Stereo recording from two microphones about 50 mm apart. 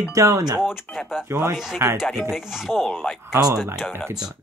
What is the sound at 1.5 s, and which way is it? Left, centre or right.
Speech, centre.